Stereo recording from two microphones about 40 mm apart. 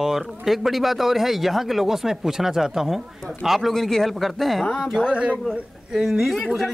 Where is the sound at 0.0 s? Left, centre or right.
Centre.